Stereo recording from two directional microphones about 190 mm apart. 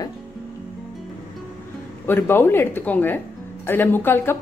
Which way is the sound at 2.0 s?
10° left (ahead or behind).